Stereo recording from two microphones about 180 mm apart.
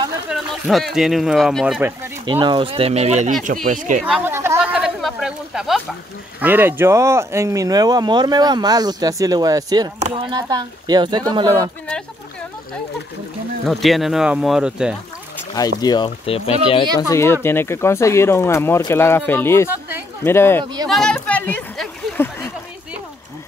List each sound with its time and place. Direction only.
0.3 s speech: centre (ahead or behind)
2.4 s speech: 25° right (ahead or behind); by 4.0 s 45° right (ahead or behind)
4.0 s chatter: 10° right (ahead or behind)
4.6 s a sound: centre (ahead or behind)
6.4 s speech: 10° right (ahead or behind)
9.9 s speech: 35° right (ahead or behind)
13.7 s speech: centre (ahead or behind)
15.3 s a sound: 20° left (ahead or behind)
15.8 s speech: 25° left (ahead or behind)
17.1 s speech: 15° left (ahead or behind)
20.6 s speech: 20° right (ahead or behind)
20.9 s a sound: 5° left (ahead or behind)